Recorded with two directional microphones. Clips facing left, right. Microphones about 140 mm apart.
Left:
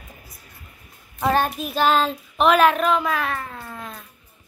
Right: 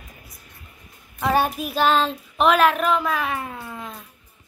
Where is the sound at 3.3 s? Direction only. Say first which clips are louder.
Right 1 dB; 10° right (ahead or behind).